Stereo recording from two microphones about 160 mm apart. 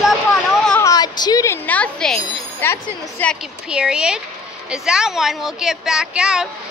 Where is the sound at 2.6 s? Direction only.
10° left (ahead or behind).